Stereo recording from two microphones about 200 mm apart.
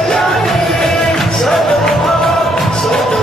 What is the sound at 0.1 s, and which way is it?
Music, centre (ahead or behind).